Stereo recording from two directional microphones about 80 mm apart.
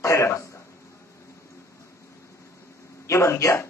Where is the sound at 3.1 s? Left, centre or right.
Left.